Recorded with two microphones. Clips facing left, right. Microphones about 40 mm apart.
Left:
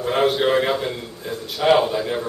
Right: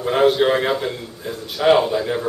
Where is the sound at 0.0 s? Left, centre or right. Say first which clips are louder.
Right 3 dB; centre.